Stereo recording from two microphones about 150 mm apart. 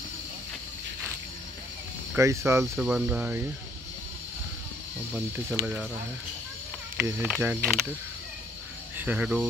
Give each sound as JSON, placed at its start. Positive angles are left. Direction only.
{"t": 2.1, "sound": "speech", "side_deg": -20}
{"t": 2.8, "sound": "speech", "side_deg": -10}
{"t": 5.1, "sound": "speech", "side_deg": -10}
{"t": 7.2, "sound": "speech", "side_deg": -5}
{"t": 8.9, "sound": "speech", "side_deg": -10}